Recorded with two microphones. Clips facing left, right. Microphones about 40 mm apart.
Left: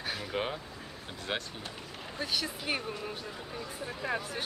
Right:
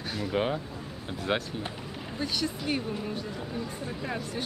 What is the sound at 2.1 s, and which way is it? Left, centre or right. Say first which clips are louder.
Speech: right 3 dB; centre.